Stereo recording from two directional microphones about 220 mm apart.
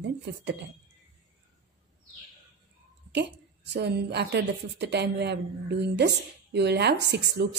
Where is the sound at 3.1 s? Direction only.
50° right (ahead or behind).